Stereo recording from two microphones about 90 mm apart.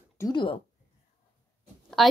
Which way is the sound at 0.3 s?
70° left (ahead or behind).